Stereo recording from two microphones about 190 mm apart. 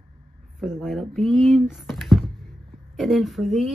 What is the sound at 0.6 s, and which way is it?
Speech, centre (ahead or behind).